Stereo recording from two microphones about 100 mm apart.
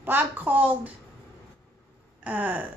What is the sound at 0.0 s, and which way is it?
Speech, 20° right (ahead or behind).